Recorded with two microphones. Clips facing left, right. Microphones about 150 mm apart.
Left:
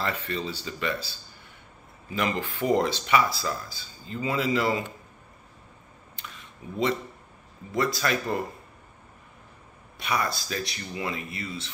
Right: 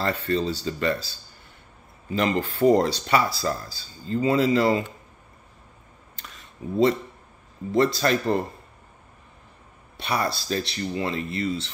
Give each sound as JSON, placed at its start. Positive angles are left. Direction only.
{"t": 0.0, "sound": "speech", "side_deg": -35}
{"t": 2.1, "sound": "speech", "side_deg": -35}
{"t": 6.1, "sound": "a sound", "side_deg": -35}
{"t": 7.7, "sound": "speech", "side_deg": -30}
{"t": 9.9, "sound": "speech", "side_deg": -35}